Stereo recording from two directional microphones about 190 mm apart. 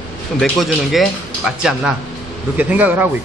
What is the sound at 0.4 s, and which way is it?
A man's voice, centre (ahead or behind).